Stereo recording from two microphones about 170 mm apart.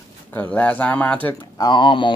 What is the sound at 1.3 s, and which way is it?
Speech, 25° left (ahead or behind).